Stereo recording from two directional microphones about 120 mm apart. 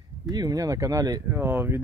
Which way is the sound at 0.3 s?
30° right (ahead or behind).